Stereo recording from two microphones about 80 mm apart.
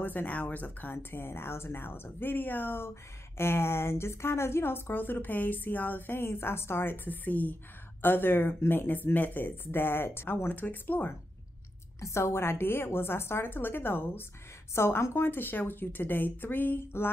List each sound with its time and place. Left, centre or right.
0.0 s speech: left
12.0 s speech: left